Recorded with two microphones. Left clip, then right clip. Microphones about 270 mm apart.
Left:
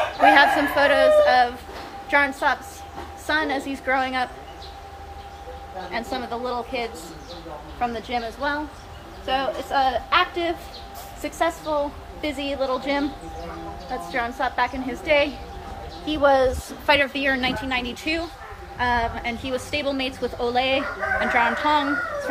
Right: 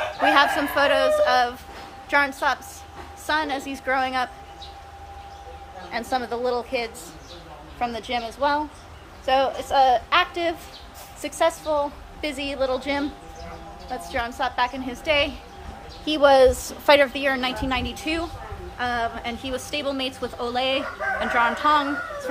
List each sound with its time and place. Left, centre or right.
0.3 s a woman's voice: centre
5.9 s a woman's voice: centre
14.1 s a woman's voice: centre
16.1 s a woman's voice: right
17.1 s a woman's voice: centre